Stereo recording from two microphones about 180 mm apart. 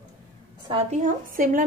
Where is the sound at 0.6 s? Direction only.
35° right (ahead or behind).